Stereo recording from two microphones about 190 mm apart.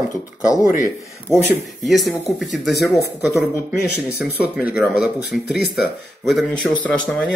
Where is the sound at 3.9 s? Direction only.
55° left (ahead or behind).